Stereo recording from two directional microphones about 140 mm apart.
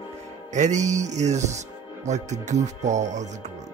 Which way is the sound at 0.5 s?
60° right (ahead or behind).